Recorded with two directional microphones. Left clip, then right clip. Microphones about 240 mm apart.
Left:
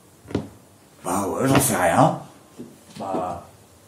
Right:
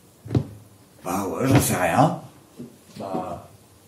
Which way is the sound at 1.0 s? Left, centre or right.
Centre.